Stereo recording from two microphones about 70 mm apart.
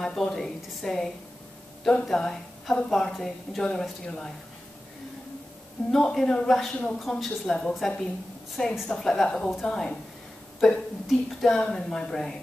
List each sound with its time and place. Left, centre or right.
0.0 s a woman's voice: centre
5.9 s a woman's voice: centre